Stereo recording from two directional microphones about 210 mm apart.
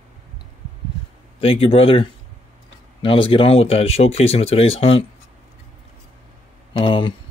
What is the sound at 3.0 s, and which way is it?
Speech, 25° left (ahead or behind).